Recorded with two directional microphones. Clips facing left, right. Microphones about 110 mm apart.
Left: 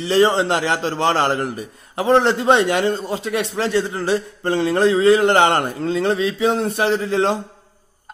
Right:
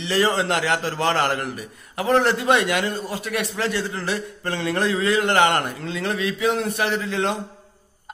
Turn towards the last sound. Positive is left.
turn(degrees=30)  # may be behind; listen again after turning